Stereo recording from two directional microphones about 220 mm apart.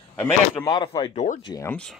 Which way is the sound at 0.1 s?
10° left (ahead or behind).